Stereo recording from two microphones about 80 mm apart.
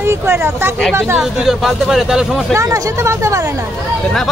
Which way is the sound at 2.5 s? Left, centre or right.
Right.